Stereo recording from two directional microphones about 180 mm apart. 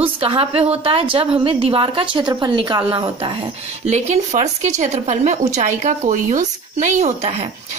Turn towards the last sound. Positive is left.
turn(degrees=-40)  # may be behind; listen again after turning